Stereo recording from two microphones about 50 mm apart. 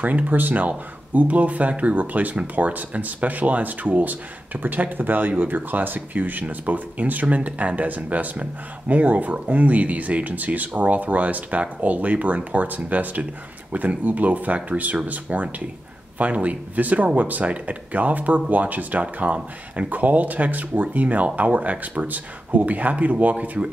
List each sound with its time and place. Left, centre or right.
0.0 s speech: right